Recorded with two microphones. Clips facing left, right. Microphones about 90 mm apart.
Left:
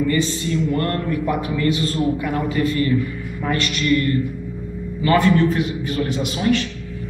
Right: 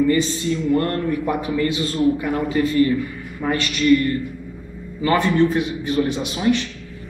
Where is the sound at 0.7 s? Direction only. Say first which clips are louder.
Right 1 dB; 25° right (ahead or behind).